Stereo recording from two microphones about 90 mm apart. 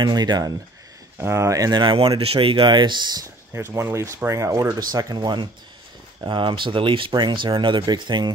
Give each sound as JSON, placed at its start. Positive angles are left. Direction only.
{"t": 0.0, "sound": "speech", "side_deg": -55}
{"t": 1.2, "sound": "speech", "side_deg": -30}
{"t": 1.8, "sound": "speech", "side_deg": -60}
{"t": 2.1, "sound": "speech", "side_deg": -90}
{"t": 3.5, "sound": "speech", "side_deg": -30}